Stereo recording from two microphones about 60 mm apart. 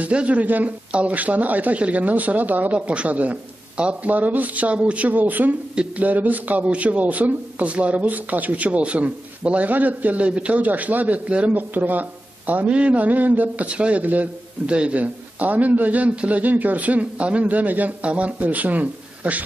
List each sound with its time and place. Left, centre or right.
0.0 s speech: right